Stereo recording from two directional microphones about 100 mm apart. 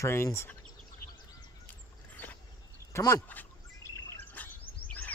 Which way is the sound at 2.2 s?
20° left (ahead or behind).